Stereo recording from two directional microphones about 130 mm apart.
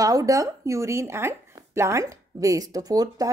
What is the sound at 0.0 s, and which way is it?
Speech, 25° right (ahead or behind).